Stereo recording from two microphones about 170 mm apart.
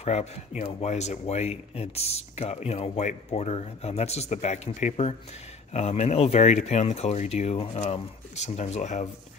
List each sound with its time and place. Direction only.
0.0 s speech: 40° left (ahead or behind)